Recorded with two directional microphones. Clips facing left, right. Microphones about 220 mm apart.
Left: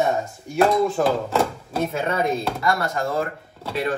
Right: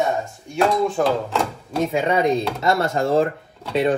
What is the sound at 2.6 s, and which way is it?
Speech, 25° right (ahead or behind).